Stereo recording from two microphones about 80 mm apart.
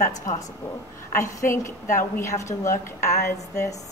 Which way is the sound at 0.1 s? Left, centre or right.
Left.